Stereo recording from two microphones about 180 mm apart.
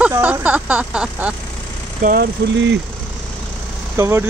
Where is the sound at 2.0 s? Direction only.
60° right (ahead or behind); by 2.8 s 80° right.